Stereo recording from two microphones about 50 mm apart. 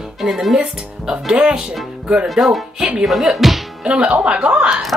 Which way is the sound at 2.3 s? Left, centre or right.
Centre.